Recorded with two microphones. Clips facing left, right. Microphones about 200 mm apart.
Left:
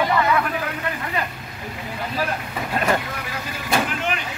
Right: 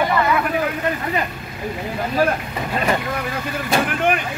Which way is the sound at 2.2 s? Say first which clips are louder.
Right 8 dB; 50° right (ahead or behind).